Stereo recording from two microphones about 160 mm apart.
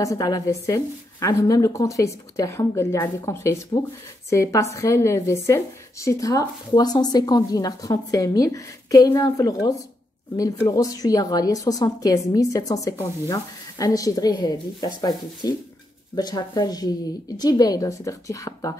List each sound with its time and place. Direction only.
0.0 s a woman's voice: 20° left (ahead or behind)